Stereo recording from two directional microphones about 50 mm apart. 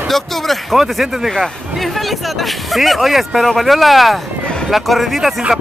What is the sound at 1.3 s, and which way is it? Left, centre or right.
Speech, centre.